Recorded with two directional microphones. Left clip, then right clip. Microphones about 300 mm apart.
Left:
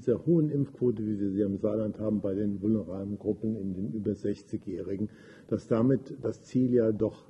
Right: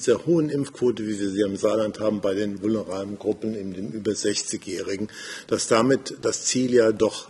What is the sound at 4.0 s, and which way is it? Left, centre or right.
Speech, centre.